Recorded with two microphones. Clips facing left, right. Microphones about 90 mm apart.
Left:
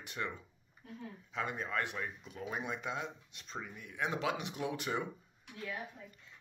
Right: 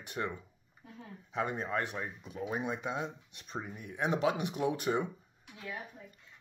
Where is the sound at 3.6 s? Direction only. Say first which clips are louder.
Right 4 dB; 35° right (ahead or behind).